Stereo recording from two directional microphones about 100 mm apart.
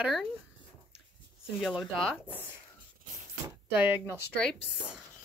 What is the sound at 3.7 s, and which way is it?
Speech, 20° right (ahead or behind).